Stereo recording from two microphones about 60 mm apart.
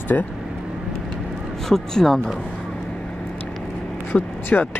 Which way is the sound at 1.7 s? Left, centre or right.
Centre.